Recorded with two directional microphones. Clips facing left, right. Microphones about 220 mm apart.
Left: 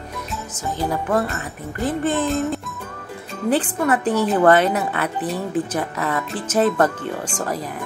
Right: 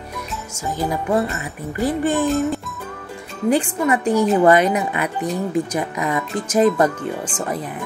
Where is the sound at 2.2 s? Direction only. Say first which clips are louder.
Right 2 dB; centre (ahead or behind).